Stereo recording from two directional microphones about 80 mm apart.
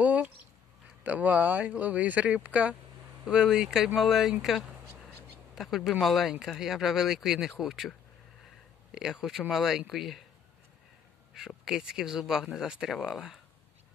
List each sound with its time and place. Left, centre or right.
0.0 s a sound: centre
1.0 s speech: centre
8.9 s speech: centre
11.3 s speech: centre